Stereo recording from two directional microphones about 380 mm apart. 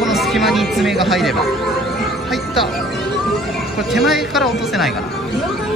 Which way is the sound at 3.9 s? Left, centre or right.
Centre.